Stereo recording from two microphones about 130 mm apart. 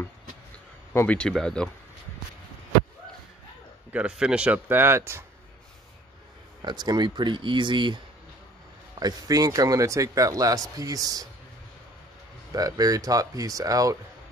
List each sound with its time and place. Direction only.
0.9 s speech: 10° left (ahead or behind)
3.9 s speech: 10° right (ahead or behind)
6.6 s speech: 35° right (ahead or behind)
9.0 s a man's voice: 25° right (ahead or behind)
12.5 s a man's voice: 30° right (ahead or behind)